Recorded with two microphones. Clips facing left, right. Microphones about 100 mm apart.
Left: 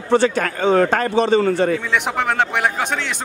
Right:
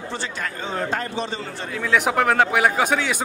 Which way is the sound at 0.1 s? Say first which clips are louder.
Left 16 dB; 65° left (ahead or behind).